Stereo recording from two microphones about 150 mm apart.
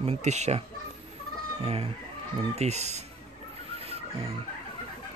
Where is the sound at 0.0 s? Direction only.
50° right (ahead or behind).